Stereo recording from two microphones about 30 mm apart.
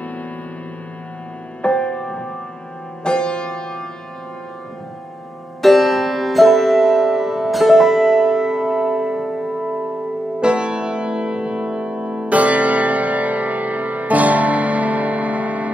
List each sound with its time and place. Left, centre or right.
1.6 s music: left
5.6 s music: centre
10.4 s music: right
12.4 s music: right